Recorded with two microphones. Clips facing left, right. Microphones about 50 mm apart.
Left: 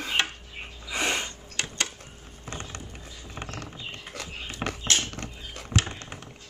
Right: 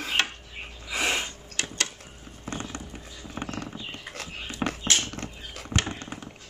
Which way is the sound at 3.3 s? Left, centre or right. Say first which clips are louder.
Right 4 dB; right.